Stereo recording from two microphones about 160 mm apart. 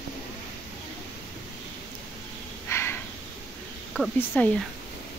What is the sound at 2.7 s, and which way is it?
Snort, 15° left (ahead or behind).